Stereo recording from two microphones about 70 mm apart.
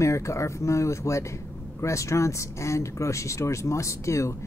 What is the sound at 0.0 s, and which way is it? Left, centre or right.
Speech, left.